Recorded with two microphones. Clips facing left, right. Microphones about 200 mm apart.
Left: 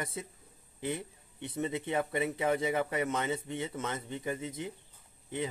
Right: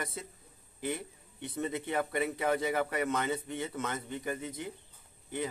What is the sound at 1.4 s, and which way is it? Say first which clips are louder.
Speech: left 1 dB; 20° left (ahead or behind).